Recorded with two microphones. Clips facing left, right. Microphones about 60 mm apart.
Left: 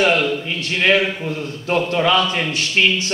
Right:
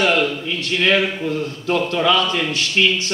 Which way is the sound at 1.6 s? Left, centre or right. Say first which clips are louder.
Left 1 dB; left.